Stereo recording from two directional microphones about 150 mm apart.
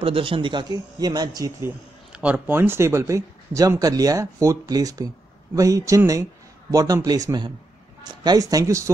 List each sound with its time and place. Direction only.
0.0 s speech: 35° right (ahead or behind)
2.1 s speech: 10° right (ahead or behind)